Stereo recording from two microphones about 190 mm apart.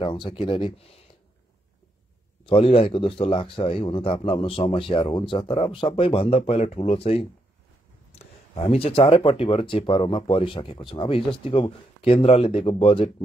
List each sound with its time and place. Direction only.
0.0 s speech: 25° left (ahead or behind)
2.4 s speech: 30° left (ahead or behind)